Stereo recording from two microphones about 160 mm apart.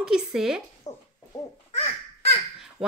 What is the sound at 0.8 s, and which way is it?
Hoot, 25° left (ahead or behind).